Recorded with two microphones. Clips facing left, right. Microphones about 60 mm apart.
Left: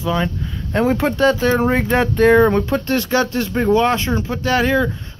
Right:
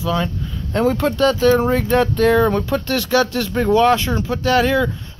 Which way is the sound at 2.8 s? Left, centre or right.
Left.